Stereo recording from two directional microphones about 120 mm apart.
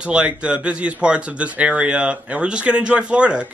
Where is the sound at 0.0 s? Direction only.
10° right (ahead or behind).